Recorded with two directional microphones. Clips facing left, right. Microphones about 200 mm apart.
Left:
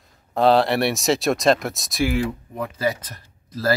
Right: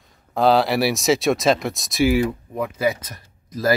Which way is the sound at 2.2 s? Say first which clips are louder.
Right 3 dB; 10° right (ahead or behind).